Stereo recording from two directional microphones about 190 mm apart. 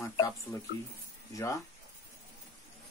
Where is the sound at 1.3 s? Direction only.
15° left (ahead or behind).